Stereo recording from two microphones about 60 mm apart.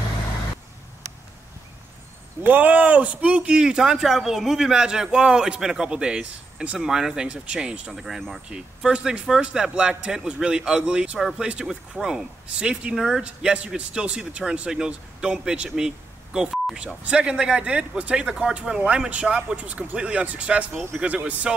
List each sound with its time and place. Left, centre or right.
2.4 s speech: right
7.9 s speech: centre
8.5 s speech: centre
12.9 s speech: centre
13.2 s speech: centre